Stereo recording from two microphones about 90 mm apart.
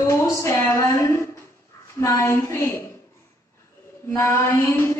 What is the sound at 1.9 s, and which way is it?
Speech, 30° left (ahead or behind).